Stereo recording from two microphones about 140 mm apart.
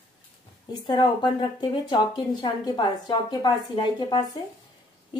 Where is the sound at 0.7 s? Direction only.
30° left (ahead or behind).